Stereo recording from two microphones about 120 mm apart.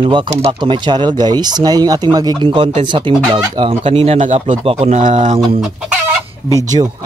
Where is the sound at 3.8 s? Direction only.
55° right (ahead or behind).